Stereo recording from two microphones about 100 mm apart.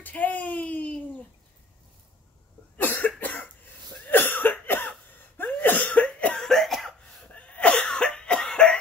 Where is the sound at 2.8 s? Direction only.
15° left (ahead or behind).